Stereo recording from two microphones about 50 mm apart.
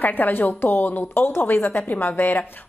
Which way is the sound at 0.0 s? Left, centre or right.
Left.